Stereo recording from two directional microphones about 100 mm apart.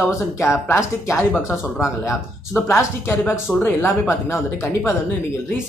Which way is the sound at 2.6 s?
30° left (ahead or behind).